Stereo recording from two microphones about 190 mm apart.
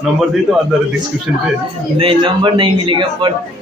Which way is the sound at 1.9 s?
25° right (ahead or behind).